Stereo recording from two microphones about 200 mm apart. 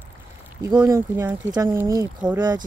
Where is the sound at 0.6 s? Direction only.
15° right (ahead or behind).